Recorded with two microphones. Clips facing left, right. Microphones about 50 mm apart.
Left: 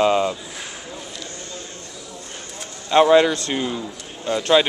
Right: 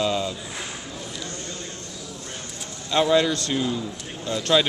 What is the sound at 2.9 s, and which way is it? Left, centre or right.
Speech, left.